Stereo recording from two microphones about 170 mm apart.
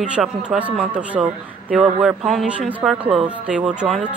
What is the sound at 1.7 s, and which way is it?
Speech, 5° right (ahead or behind).